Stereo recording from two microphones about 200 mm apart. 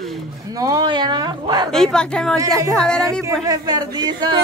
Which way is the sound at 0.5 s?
20° right (ahead or behind).